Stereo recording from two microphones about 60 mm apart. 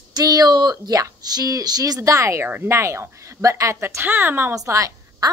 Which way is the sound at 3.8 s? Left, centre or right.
Right.